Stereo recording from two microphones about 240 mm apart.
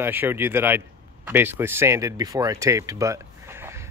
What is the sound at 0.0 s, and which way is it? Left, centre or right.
Speech, centre.